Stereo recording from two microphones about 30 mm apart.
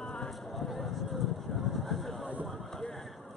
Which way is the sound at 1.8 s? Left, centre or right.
Centre.